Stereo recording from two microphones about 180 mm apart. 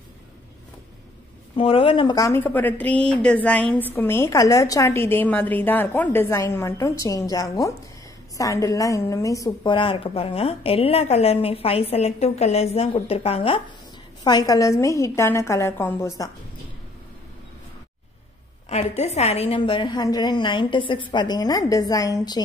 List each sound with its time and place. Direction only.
1.6 s a woman's voice: 30° left (ahead or behind)
14.2 s a woman's voice: 20° left (ahead or behind)
18.7 s a woman's voice: 35° left (ahead or behind); by 22.4 s 20° left (ahead or behind)